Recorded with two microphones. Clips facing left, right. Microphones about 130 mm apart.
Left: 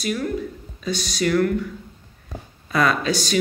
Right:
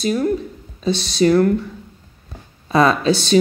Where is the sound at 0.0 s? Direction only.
30° right (ahead or behind).